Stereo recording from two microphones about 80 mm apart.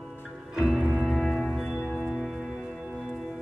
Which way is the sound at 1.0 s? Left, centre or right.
Centre.